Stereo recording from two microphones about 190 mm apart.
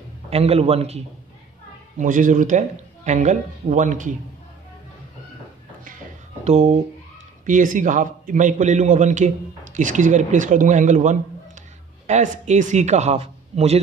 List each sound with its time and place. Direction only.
0.3 s a man's voice: 30° right (ahead or behind)
6.4 s a man's voice: 35° right (ahead or behind)